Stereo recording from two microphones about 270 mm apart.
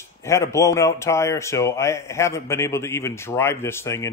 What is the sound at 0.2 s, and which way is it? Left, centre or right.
Speech, centre.